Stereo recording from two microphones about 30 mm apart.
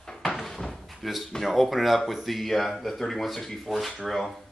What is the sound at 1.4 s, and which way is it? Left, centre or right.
Speech, centre.